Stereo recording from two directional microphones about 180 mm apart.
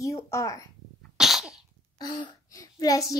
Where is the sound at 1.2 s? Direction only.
5° right (ahead or behind).